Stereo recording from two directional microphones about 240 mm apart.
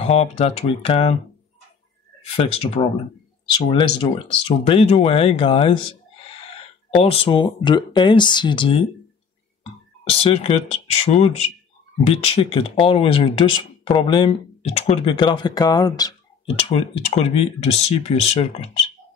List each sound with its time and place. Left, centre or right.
0.0 s speech: left
2.3 s speech: left
7.0 s speech: left